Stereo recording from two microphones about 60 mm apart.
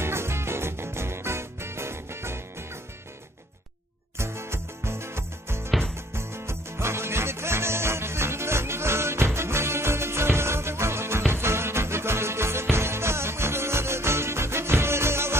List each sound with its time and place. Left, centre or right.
0.0 s music: right
4.2 s music: right